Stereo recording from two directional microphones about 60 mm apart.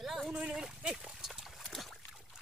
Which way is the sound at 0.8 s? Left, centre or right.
Centre.